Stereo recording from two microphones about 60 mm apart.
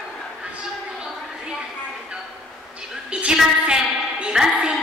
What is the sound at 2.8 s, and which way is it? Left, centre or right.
Music, centre.